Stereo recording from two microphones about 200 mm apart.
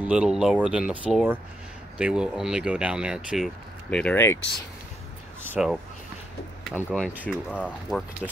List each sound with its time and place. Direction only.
0.0 s speech: 5° right (ahead or behind)
5.4 s speech: 5° right (ahead or behind)
6.7 s speech: 5° left (ahead or behind)